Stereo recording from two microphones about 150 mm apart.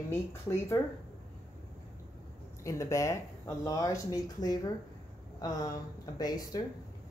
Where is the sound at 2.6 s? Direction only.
20° left (ahead or behind).